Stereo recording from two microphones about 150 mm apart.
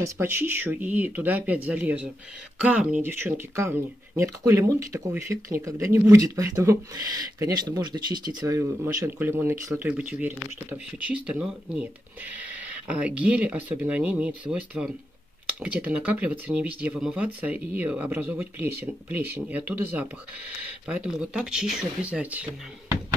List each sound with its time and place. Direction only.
0.0 s speech: 15° right (ahead or behind)